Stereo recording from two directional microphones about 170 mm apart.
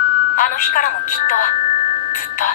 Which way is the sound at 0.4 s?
55° left (ahead or behind).